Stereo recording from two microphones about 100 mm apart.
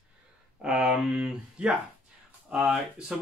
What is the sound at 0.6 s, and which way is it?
Speech, 5° right (ahead or behind).